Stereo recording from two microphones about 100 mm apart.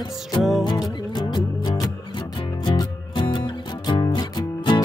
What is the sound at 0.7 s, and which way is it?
Music, 45° left (ahead or behind).